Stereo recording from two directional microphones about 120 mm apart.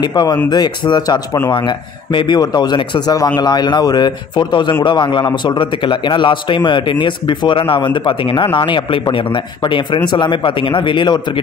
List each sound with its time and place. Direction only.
0.0 s a man's voice: 35° left (ahead or behind)